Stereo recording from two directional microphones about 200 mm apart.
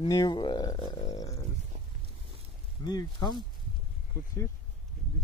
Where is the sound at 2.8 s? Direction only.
20° left (ahead or behind).